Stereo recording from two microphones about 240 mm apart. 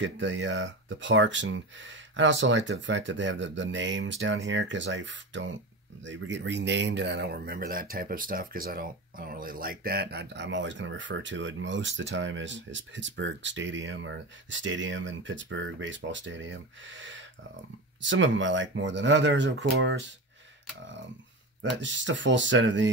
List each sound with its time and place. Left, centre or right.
0.0 s speech: right
21.6 s speech: right